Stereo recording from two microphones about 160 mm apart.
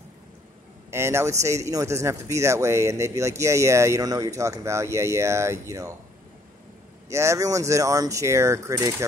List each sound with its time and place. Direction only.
0.8 s speech: 15° right (ahead or behind)
7.1 s speech: 20° right (ahead or behind)